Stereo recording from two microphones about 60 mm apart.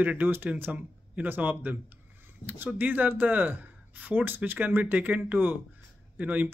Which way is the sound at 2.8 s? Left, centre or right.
Right.